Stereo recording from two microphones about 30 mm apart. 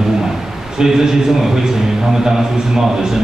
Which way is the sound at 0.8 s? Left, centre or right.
Centre.